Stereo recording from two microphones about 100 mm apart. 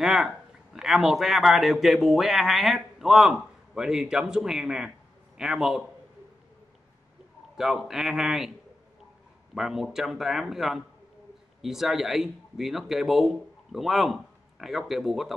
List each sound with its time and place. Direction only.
0.0 s speech: 5° right (ahead or behind)
7.5 s speech: 5° right (ahead or behind)
9.6 s speech: 5° right (ahead or behind)